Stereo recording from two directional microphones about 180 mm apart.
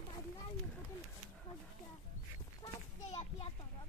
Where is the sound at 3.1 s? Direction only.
30° left (ahead or behind).